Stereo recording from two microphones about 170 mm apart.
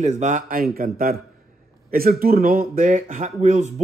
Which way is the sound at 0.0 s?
45° right (ahead or behind).